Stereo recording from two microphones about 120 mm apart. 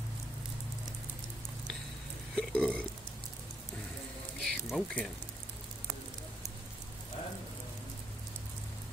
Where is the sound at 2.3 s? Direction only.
10° left (ahead or behind).